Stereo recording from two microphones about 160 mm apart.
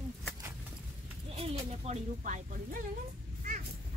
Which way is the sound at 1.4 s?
40° right (ahead or behind).